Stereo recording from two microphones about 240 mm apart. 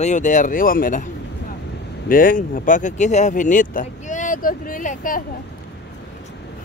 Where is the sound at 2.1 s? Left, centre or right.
Left.